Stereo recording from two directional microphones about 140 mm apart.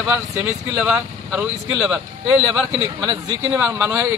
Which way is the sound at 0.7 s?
5° right (ahead or behind).